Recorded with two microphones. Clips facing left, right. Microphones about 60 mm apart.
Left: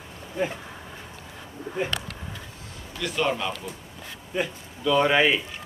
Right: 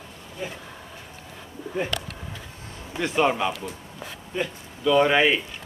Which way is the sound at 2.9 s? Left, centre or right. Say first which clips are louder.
Right 4 dB; right.